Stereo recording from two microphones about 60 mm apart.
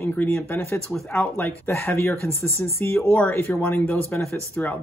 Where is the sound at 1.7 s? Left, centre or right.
Left.